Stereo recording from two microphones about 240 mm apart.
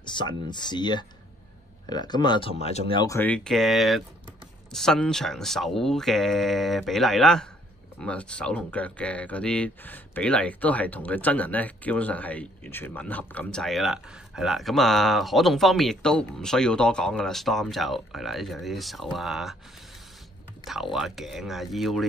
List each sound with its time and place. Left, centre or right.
0.0 s speech: centre
20.6 s speech: centre